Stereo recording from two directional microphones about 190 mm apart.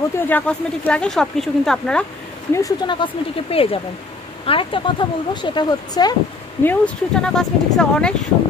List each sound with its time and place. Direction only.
0.3 s speech: 5° left (ahead or behind)
2.5 s speech: 20° left (ahead or behind)
6.6 s speech: 5° left (ahead or behind)